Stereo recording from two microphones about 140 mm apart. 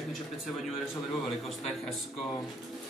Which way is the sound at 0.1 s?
Centre (ahead or behind).